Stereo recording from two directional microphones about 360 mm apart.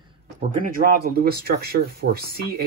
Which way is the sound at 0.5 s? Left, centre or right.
Right.